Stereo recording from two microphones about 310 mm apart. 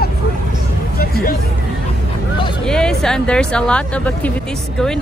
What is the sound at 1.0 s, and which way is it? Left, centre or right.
Hubbub, left.